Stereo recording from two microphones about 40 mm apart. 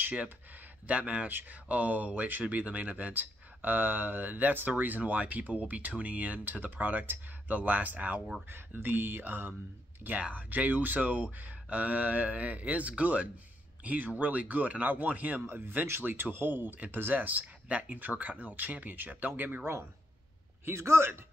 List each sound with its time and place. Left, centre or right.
0.8 s speech: right
8.5 s speech: right
10.3 s speech: right
20.6 s a man's voice: right